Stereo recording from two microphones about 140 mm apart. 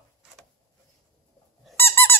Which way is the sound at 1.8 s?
15° left (ahead or behind).